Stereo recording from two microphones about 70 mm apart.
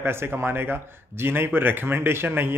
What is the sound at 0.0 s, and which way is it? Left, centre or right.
A man's voice, right.